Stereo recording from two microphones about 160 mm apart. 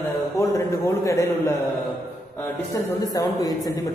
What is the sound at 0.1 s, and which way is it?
A man's voice, 15° left (ahead or behind).